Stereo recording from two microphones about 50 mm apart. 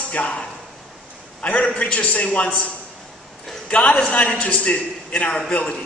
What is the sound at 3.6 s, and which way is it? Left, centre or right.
A man's voice, left.